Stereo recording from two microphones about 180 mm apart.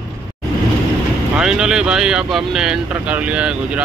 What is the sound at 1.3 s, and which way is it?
Speech, 5° right (ahead or behind).